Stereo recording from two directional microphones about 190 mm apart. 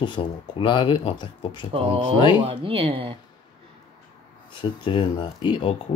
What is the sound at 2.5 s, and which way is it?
Speech, 30° right (ahead or behind).